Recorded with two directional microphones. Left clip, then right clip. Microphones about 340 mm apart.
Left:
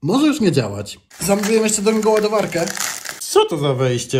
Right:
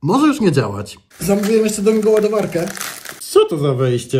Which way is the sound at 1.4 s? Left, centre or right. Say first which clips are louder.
Right 2 dB; centre.